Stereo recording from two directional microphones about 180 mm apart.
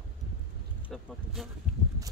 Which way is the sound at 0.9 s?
Centre (ahead or behind).